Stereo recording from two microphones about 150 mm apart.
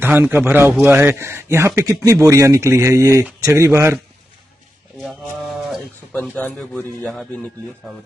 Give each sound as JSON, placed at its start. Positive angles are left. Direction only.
{"t": 0.0, "sound": "speech", "side_deg": -15}
{"t": 5.0, "sound": "a sound", "side_deg": 0}
{"t": 6.3, "sound": "speech", "side_deg": 10}